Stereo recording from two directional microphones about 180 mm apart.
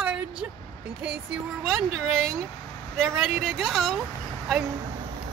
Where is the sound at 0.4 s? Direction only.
10° right (ahead or behind).